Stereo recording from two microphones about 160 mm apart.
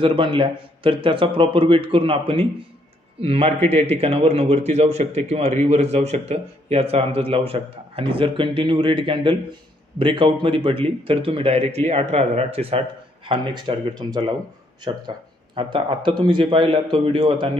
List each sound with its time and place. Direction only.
0.0 s a man's voice: 30° right (ahead or behind)